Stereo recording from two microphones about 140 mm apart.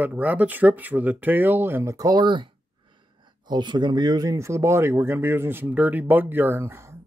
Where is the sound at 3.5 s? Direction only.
30° right (ahead or behind).